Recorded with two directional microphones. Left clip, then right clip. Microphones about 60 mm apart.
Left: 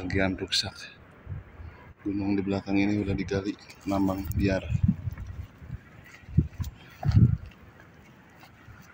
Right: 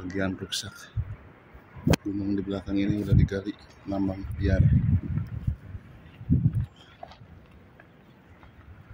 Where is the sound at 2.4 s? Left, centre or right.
Centre.